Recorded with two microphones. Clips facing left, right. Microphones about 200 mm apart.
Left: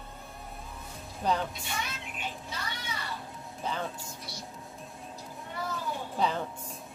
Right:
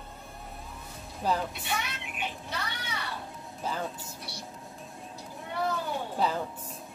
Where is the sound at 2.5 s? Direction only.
65° right (ahead or behind).